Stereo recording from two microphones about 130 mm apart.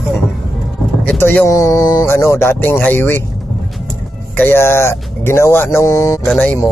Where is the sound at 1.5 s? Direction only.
25° left (ahead or behind).